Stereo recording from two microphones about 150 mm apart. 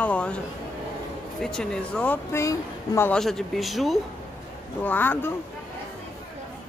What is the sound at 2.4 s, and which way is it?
Speech, 20° left (ahead or behind).